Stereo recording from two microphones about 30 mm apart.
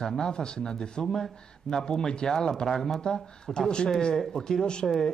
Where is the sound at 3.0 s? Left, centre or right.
Left.